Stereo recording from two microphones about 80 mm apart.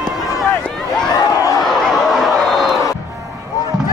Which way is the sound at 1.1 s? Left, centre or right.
Left.